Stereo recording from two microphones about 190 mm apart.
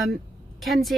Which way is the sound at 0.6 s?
Centre (ahead or behind).